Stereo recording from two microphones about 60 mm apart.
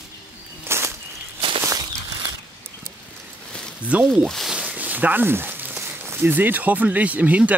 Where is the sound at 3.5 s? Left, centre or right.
Centre.